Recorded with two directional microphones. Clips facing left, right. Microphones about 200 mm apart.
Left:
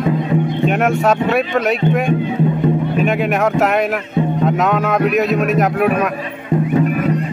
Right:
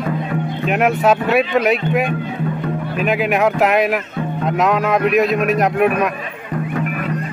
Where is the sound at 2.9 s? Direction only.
Centre (ahead or behind).